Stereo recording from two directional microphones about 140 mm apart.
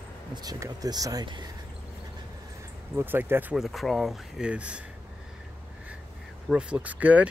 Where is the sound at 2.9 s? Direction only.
15° right (ahead or behind).